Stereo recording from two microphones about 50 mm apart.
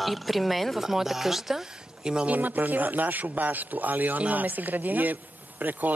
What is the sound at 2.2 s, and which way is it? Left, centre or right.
Speech, right.